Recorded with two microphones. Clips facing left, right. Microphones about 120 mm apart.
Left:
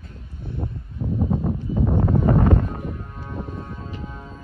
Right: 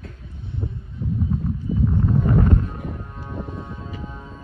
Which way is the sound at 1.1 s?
55° left (ahead or behind).